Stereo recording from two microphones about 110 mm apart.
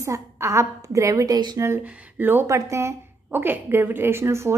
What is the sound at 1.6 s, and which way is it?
Speech, 25° right (ahead or behind).